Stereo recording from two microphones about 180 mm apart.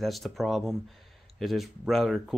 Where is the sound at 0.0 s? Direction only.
Centre (ahead or behind).